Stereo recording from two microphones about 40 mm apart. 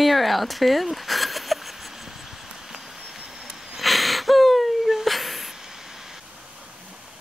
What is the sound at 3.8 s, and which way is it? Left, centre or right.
Wheeze, centre.